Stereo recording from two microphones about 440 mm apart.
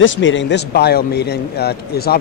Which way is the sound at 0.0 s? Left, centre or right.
Left.